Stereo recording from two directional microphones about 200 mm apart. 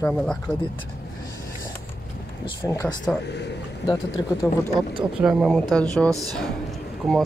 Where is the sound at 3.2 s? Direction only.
60° left (ahead or behind).